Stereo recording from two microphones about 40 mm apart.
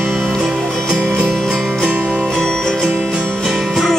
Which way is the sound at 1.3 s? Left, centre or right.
Centre.